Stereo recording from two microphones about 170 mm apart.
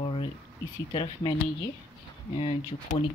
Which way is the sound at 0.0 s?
30° left (ahead or behind).